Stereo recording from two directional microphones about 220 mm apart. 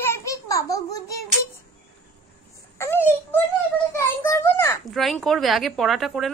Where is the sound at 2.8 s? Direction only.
10° left (ahead or behind).